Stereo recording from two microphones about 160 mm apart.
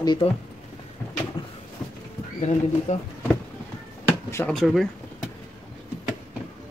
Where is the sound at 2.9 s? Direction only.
45° left (ahead or behind).